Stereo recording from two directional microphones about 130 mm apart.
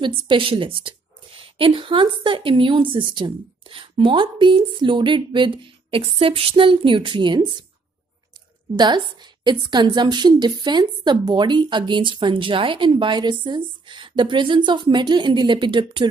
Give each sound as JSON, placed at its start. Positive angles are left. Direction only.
{"t": 0.0, "sound": "a woman's voice", "side_deg": -40}
{"t": 8.7, "sound": "a woman's voice", "side_deg": -35}